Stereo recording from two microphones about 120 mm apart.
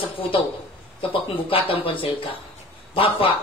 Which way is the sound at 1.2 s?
50° left (ahead or behind).